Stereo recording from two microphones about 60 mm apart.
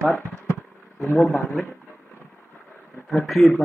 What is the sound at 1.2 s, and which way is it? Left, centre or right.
Speech, centre.